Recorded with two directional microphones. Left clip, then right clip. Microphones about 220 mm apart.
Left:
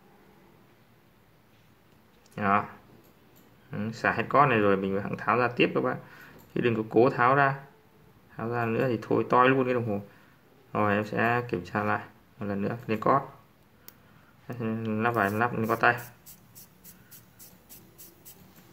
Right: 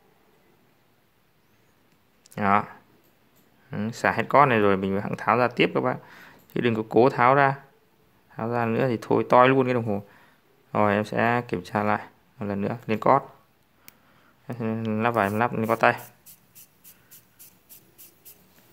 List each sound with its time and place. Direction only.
2.3 s speech: 45° right (ahead or behind)
3.7 s speech: 45° right (ahead or behind)
14.5 s speech: 45° right (ahead or behind)
17.1 s a sound: 35° right (ahead or behind)